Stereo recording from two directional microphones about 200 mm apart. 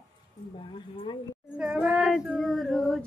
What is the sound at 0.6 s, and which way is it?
Speech, 25° left (ahead or behind).